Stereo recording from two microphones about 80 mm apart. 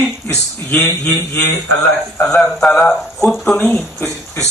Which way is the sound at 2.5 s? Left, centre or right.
Centre.